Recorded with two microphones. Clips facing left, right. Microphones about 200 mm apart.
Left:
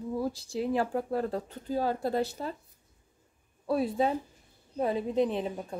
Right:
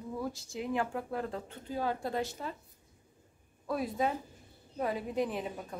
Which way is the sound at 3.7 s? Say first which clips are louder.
Left 5 dB; 30° left (ahead or behind).